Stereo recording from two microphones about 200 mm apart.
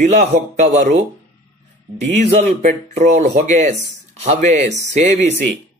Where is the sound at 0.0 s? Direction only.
35° right (ahead or behind).